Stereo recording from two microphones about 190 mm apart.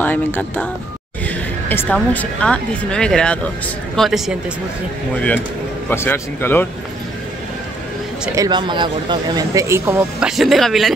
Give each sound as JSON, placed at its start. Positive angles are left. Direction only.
{"t": 0.0, "sound": "speech", "side_deg": 10}
{"t": 1.2, "sound": "a sound", "side_deg": 10}
{"t": 2.0, "sound": "speech", "side_deg": 5}
{"t": 8.4, "sound": "speech", "side_deg": -25}